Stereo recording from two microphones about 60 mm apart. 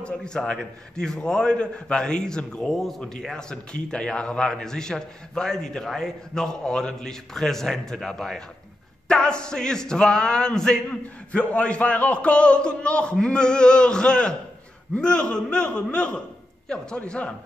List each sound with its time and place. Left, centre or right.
0.0 s a man's voice: centre